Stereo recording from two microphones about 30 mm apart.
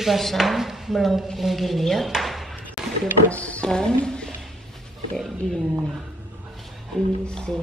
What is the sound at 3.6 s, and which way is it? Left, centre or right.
Speech, left.